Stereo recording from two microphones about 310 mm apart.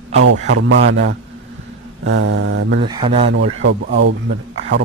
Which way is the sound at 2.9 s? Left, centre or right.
Centre.